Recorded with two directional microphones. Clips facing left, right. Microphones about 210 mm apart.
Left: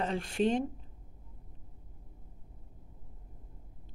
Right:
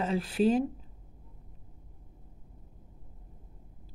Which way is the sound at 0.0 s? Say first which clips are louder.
Right 3 dB; 5° right (ahead or behind).